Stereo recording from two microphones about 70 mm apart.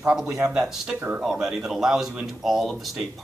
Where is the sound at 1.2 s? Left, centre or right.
Centre.